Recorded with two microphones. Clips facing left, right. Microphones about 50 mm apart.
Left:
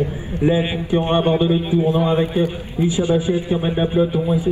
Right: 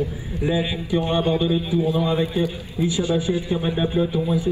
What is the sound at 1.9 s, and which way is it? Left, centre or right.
Speech, left.